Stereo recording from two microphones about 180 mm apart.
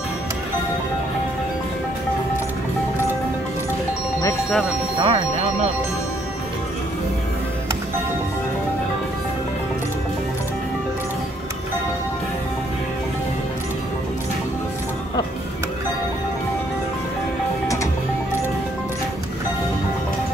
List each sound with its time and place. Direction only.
4.9 s speech: 30° right (ahead or behind)